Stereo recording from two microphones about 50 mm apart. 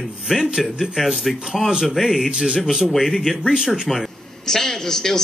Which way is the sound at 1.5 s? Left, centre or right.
Centre.